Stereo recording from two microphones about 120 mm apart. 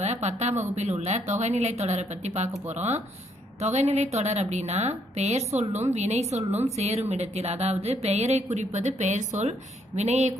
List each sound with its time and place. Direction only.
0.0 s a woman's voice: 70° right (ahead or behind)